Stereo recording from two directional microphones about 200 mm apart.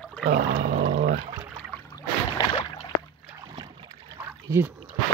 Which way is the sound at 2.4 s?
20° left (ahead or behind).